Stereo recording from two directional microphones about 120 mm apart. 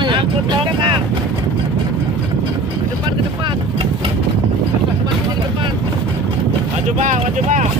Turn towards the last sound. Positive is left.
turn(degrees=-90)